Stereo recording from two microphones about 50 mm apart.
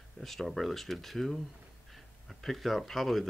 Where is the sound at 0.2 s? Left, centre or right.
Centre.